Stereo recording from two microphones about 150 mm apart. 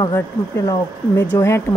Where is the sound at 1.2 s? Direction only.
15° left (ahead or behind).